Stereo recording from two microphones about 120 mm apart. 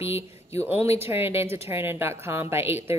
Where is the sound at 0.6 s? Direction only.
20° right (ahead or behind).